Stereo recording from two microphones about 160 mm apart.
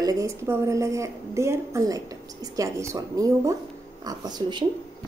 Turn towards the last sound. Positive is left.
turn(degrees=-25)  # may be behind; listen again after turning